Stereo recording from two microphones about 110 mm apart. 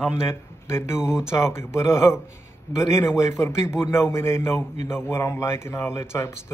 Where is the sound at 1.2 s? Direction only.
25° left (ahead or behind).